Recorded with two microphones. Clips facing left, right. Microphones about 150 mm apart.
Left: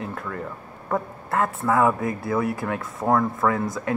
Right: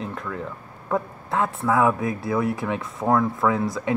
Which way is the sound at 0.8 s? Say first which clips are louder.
Right 1 dB; centre (ahead or behind).